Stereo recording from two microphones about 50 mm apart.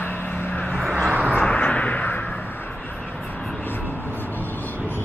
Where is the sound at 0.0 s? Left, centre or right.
Left.